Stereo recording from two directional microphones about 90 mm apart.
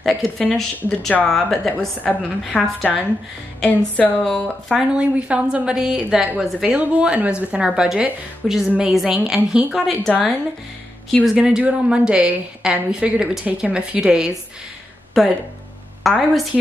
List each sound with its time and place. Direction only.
0.0 s speech: centre (ahead or behind)
2.0 s speech: 15° left (ahead or behind)
2.8 s speech: centre (ahead or behind)
3.6 s speech: 15° left (ahead or behind)
4.2 s speech: 5° left (ahead or behind)
4.9 s a woman's voice: 10° right (ahead or behind)
11.3 s a woman's voice: 10° right (ahead or behind)